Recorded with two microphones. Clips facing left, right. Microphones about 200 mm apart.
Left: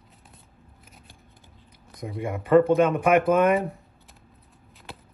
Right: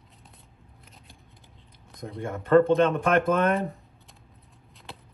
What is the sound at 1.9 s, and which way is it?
Speech, 5° left (ahead or behind).